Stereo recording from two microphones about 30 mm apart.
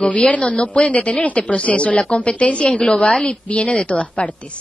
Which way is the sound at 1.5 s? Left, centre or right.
Left.